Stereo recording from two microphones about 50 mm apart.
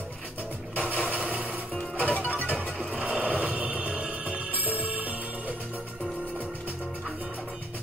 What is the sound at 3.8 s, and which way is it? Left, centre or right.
Music, right.